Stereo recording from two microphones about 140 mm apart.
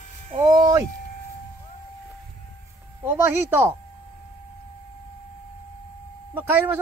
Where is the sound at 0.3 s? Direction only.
35° right (ahead or behind).